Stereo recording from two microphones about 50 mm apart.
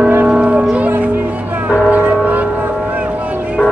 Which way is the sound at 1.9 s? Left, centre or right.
Right.